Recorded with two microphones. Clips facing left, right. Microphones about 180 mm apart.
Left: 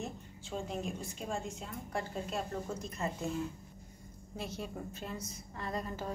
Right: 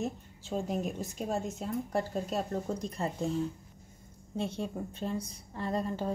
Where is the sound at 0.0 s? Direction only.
40° right (ahead or behind).